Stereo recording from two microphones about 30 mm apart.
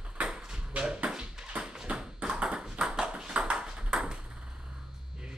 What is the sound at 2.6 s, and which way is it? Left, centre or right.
Ping, right.